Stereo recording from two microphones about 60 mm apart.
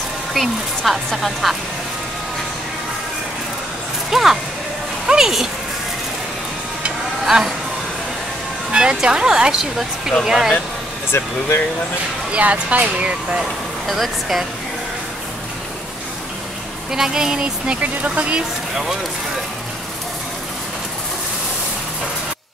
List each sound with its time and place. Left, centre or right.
0.3 s speech: centre
4.1 s speech: centre
8.7 s speech: centre
11.1 s speech: left
12.3 s speech: right
13.8 s speech: centre
16.9 s speech: centre